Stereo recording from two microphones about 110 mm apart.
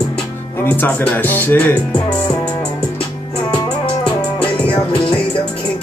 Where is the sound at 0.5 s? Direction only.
15° left (ahead or behind).